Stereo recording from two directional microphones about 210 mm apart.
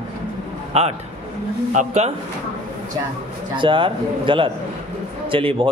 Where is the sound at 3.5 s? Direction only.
25° right (ahead or behind).